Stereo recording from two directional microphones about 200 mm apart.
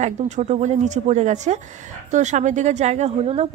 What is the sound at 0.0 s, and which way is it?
A woman's voice, 35° right (ahead or behind).